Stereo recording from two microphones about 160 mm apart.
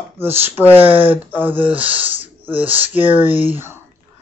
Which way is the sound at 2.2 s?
35° right (ahead or behind).